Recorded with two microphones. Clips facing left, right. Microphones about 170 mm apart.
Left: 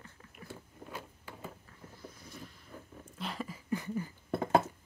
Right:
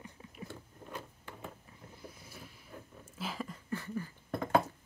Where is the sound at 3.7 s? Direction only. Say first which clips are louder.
Left 4 dB; 15° left (ahead or behind).